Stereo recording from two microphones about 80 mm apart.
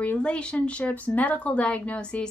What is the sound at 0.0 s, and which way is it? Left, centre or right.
A woman's voice, centre.